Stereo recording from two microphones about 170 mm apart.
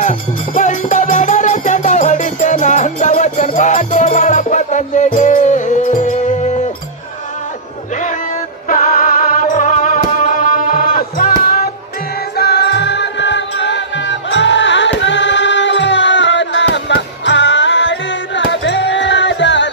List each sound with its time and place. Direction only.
0.0 s music: 45° left (ahead or behind)
7.9 s music: 45° left (ahead or behind)
12.4 s music: 75° left (ahead or behind); by 19.7 s 90° left